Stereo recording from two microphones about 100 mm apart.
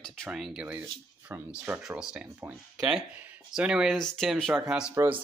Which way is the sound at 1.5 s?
10° right (ahead or behind).